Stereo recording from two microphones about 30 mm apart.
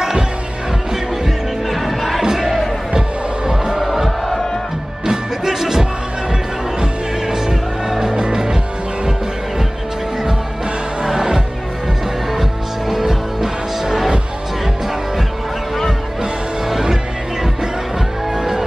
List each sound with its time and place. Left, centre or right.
1.2 s music: centre
3.4 s music: right
3.8 s music: centre
5.0 s music: right
11.1 s music: centre
16.8 s music: centre